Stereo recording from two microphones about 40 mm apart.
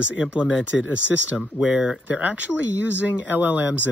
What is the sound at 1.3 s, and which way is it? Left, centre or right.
Speech, right.